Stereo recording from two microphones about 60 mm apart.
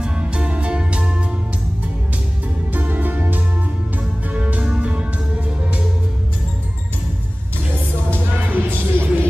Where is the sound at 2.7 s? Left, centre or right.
Right.